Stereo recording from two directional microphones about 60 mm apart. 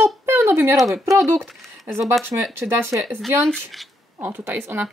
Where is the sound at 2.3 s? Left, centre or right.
Right.